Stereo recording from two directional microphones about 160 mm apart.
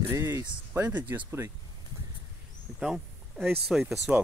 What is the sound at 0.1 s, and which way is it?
Speech, 20° right (ahead or behind).